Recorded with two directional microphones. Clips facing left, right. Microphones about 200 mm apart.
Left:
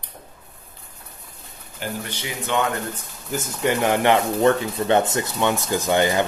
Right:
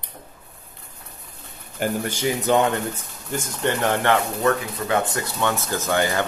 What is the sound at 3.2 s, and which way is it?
Speech, 5° left (ahead or behind).